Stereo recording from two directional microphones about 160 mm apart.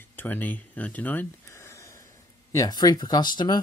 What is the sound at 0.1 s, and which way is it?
Speech, 10° left (ahead or behind).